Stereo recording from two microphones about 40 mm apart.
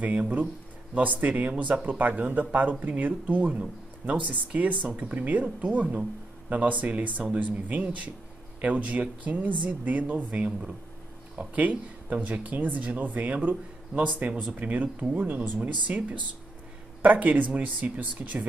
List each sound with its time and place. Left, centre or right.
0.0 s speech: right
15.3 s speech: right